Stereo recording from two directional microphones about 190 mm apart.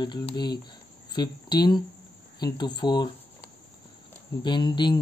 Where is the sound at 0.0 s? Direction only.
25° left (ahead or behind).